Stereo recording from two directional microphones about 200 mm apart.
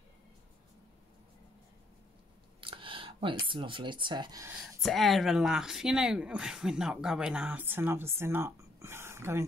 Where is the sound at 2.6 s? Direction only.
25° right (ahead or behind).